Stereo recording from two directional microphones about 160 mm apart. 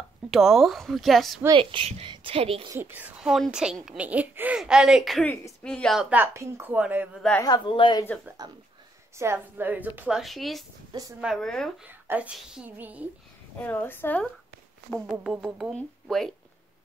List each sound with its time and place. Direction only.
0.3 s speech: centre (ahead or behind)
1.5 s a woman's voice: 35° right (ahead or behind)
2.7 s speech: 10° right (ahead or behind)
5.2 s speech: 10° left (ahead or behind); by 7.2 s 10° right (ahead or behind)
7.4 s speech: 30° left (ahead or behind)
8.4 s speech: 25° right (ahead or behind); by 10.6 s centre (ahead or behind)
10.9 s speech: 25° right (ahead or behind)
11.1 s speech: centre (ahead or behind)
11.9 s speech: 10° right (ahead or behind)
13.6 s a woman's voice: 10° left (ahead or behind)
14.9 s speech: centre (ahead or behind)